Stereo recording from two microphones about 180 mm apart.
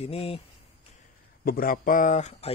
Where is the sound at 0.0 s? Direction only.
35° left (ahead or behind).